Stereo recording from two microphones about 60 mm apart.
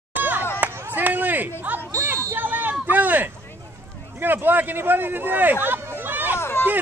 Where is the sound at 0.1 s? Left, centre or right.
Right.